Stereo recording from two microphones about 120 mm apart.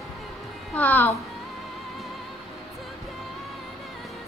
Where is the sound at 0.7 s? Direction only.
15° left (ahead or behind).